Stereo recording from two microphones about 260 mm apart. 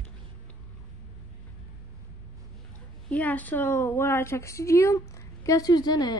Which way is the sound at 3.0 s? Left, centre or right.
Centre.